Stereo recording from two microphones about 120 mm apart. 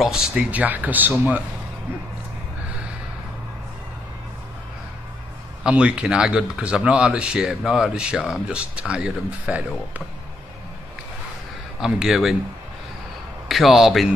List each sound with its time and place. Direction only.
0.0 s speech: 5° right (ahead or behind)
5.6 s speech: 10° right (ahead or behind)
11.8 s speech: 5° right (ahead or behind)
13.5 s a man's voice: centre (ahead or behind)